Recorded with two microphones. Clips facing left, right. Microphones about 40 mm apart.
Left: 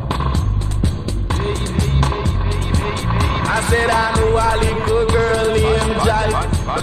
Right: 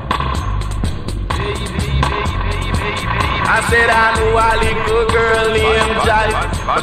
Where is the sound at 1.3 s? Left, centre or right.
Right.